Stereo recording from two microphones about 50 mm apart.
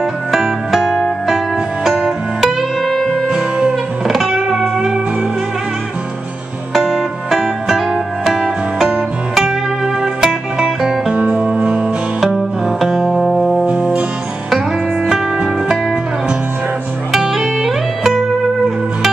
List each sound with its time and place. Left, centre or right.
0.7 s music: centre
2.0 s music: centre
2.9 s music: centre
3.3 s music: centre
4.1 s music: centre
6.7 s music: centre
10.2 s music: centre
11.1 s music: right
12.2 s music: centre
13.7 s music: right
15.0 s music: centre
17.1 s music: centre